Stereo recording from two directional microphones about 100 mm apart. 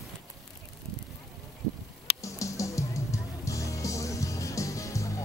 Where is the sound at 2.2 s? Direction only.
30° left (ahead or behind).